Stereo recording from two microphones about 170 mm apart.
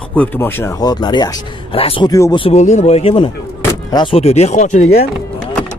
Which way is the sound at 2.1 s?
20° left (ahead or behind).